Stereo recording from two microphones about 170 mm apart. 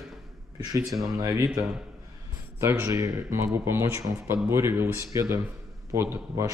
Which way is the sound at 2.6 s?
15° right (ahead or behind).